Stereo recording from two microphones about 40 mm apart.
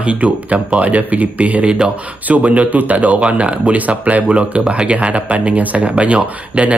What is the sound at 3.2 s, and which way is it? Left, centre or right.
Speech, right.